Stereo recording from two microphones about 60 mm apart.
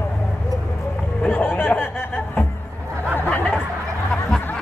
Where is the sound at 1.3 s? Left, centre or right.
Left.